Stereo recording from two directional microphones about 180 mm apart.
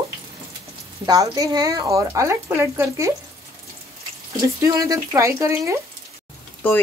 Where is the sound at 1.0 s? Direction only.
20° right (ahead or behind).